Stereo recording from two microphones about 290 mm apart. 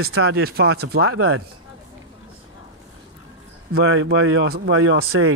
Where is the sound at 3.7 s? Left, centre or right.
Right.